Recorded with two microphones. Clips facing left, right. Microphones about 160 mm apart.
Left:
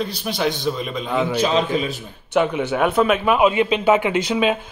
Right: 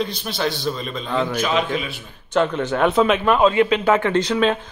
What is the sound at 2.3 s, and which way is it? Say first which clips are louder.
Speech: left 1 dB; 10° left (ahead or behind).